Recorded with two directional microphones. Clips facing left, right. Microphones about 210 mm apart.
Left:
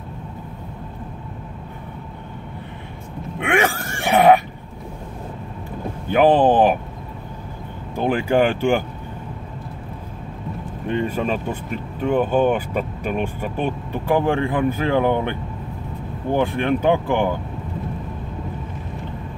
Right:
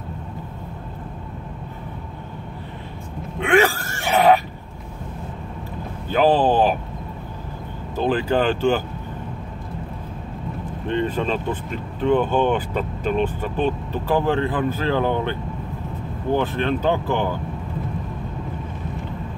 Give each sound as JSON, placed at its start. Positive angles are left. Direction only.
{"t": 3.3, "sound": "a sound", "side_deg": 15}
{"t": 6.0, "sound": "speech", "side_deg": 15}
{"t": 7.9, "sound": "speech", "side_deg": 15}
{"t": 10.9, "sound": "speech", "side_deg": 10}
{"t": 16.3, "sound": "speech", "side_deg": 15}